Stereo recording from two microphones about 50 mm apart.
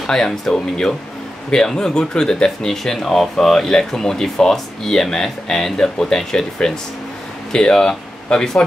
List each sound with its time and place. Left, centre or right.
0.0 s speech: centre